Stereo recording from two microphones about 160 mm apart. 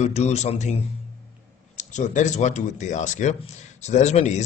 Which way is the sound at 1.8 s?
50° left (ahead or behind).